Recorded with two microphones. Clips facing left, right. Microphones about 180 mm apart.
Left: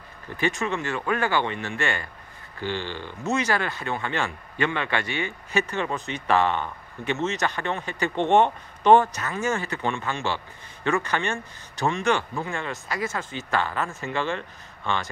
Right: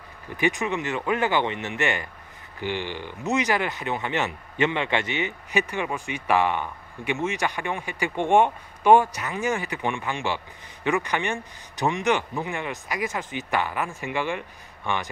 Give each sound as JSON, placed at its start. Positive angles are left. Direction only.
{"t": 0.4, "sound": "speech", "side_deg": -15}